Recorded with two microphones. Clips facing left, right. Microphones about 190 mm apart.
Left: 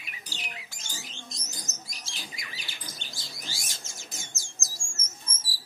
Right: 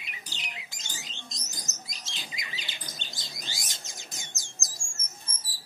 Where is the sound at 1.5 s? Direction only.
20° right (ahead or behind).